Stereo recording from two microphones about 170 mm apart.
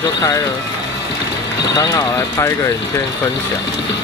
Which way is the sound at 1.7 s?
20° left (ahead or behind).